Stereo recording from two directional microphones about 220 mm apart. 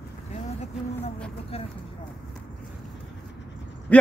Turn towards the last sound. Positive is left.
turn(degrees=5)  # may be behind; listen again after turning